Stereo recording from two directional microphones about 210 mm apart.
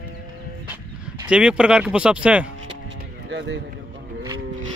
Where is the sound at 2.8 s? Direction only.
55° right (ahead or behind).